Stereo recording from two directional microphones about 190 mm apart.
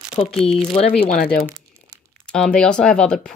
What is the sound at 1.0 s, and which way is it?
Speech, 50° left (ahead or behind).